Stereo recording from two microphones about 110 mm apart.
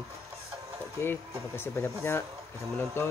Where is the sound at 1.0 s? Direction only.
20° left (ahead or behind).